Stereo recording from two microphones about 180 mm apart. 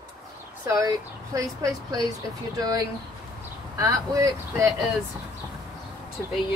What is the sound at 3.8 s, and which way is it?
Speech, 15° right (ahead or behind).